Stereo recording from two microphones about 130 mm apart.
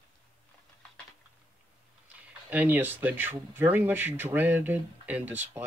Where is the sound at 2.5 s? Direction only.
15° right (ahead or behind).